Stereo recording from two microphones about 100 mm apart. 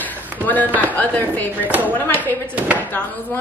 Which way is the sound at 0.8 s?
15° left (ahead or behind).